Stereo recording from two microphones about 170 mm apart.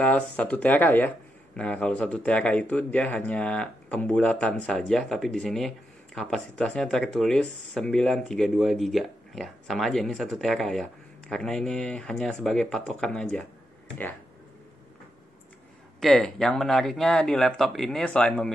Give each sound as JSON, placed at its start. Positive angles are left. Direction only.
{"t": 0.0, "sound": "speech", "side_deg": 10}
{"t": 16.0, "sound": "speech", "side_deg": 0}